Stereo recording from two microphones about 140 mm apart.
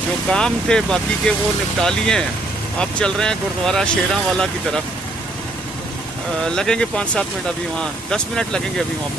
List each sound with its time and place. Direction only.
0.3 s speech: 5° left (ahead or behind)
6.4 s speech: 5° left (ahead or behind)